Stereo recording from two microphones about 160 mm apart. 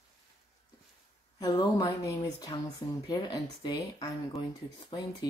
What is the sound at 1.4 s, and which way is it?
Speech, 25° left (ahead or behind).